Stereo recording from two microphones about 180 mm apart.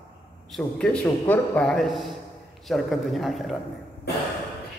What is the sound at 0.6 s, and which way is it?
A man's voice, 5° left (ahead or behind).